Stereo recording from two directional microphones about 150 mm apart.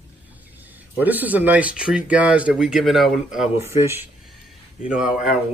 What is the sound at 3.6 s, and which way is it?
Speech, 15° right (ahead or behind).